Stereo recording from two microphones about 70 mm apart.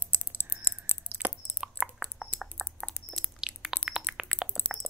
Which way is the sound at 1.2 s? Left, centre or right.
Centre.